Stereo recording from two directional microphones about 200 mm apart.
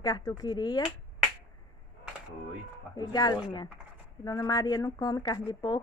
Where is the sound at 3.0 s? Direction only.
20° left (ahead or behind).